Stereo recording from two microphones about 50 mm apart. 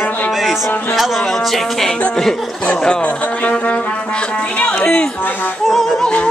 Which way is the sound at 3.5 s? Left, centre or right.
Left.